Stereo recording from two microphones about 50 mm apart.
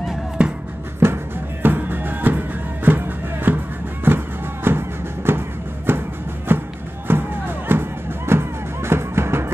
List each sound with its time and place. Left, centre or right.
0.4 s music: right
1.0 s music: right